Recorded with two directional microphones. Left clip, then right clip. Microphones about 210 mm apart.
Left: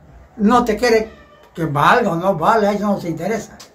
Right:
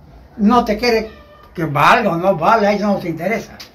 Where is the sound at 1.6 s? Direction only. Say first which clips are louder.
Right 2 dB; 10° left (ahead or behind).